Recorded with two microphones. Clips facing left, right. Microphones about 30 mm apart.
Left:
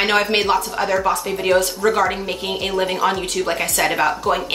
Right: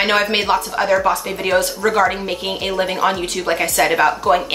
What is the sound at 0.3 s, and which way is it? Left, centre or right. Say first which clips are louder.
A woman's voice: even; centre.